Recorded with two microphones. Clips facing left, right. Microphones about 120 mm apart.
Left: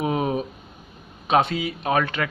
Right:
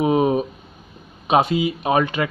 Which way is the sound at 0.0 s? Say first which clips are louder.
Right 6 dB; 20° right (ahead or behind).